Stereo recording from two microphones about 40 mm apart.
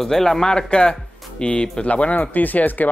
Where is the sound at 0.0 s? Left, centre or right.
Centre.